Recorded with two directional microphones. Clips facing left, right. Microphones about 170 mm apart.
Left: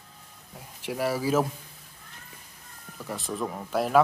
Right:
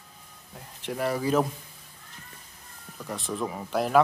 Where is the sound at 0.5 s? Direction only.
5° left (ahead or behind).